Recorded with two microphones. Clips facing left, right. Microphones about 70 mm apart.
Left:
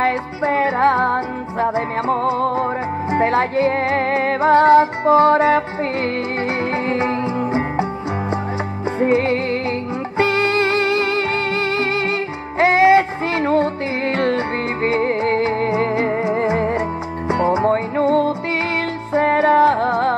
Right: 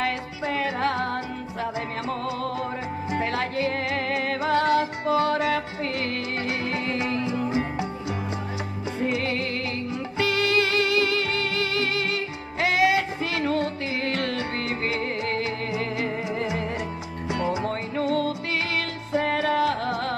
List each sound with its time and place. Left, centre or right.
0.0 s music: left
6.6 s music: left
9.0 s music: left